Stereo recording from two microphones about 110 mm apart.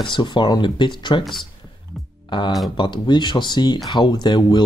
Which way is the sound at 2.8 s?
45° left (ahead or behind).